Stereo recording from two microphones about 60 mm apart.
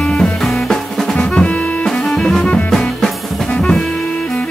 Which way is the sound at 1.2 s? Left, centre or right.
Left.